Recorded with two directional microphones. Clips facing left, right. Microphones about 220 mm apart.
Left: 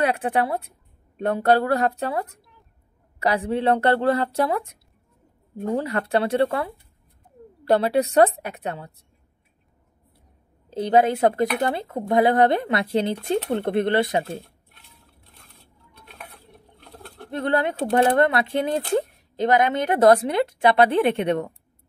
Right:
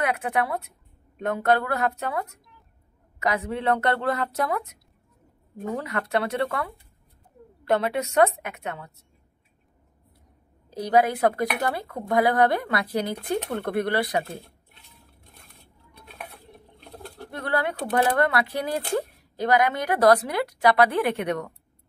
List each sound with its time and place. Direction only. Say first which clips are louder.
0.0 s a woman's voice: left 4 dB; 30° left (ahead or behind)
5.8 s a woman's voice: left 4 dB; 30° left (ahead or behind)
10.7 s speech: left 3 dB; 25° left (ahead or behind)
17.3 s speech: left 4 dB; 20° left (ahead or behind)